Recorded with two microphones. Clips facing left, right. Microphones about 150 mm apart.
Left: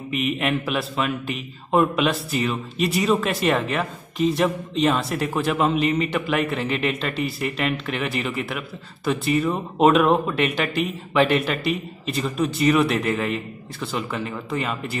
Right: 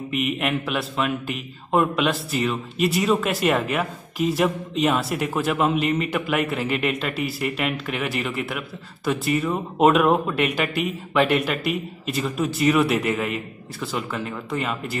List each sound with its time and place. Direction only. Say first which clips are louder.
0.1 s a man's voice: left 1 dB; centre (ahead or behind)